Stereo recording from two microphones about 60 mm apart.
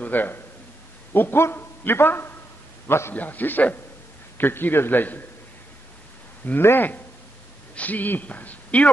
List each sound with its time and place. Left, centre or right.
0.0 s a man's voice: left
3.2 s a man's voice: left
6.4 s a man's voice: left